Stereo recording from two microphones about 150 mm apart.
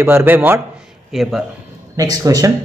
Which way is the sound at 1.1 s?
Centre (ahead or behind).